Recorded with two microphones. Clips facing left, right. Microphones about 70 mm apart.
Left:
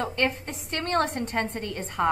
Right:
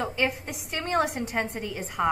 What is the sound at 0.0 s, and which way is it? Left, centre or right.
A woman's voice, centre.